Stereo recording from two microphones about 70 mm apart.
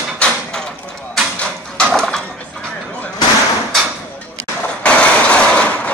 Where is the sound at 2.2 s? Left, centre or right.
Centre.